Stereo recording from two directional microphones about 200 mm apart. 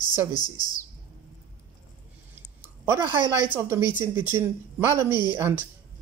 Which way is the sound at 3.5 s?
15° right (ahead or behind).